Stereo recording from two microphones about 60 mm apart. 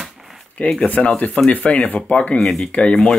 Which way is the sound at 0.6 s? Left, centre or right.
Centre.